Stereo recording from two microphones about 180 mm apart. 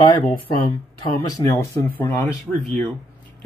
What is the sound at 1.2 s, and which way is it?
Speech, 20° left (ahead or behind).